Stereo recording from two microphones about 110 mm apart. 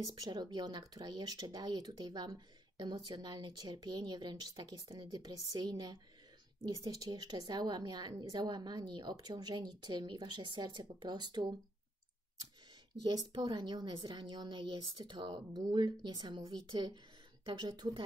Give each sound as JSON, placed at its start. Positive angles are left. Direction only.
{"t": 0.0, "sound": "a woman's voice", "side_deg": -35}
{"t": 13.0, "sound": "a woman's voice", "side_deg": -40}